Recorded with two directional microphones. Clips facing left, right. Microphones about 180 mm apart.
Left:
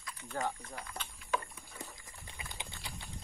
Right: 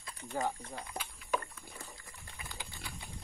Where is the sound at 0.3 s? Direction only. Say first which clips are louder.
Right 2 dB; 10° right (ahead or behind).